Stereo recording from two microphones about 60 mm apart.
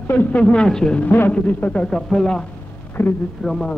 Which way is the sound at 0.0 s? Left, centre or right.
Left.